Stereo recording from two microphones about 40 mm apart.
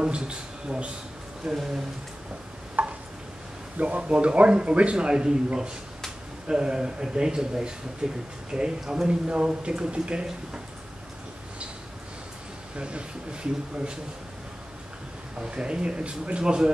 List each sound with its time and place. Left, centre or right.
0.0 s speech: right
1.4 s speech: centre
2.8 s a sound: right
3.7 s speech: right
12.7 s speech: right
15.3 s speech: right